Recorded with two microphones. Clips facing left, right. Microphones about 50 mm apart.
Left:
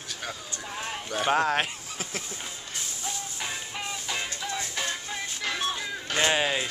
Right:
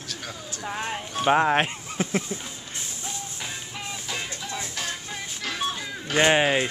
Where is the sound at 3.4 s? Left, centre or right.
Centre.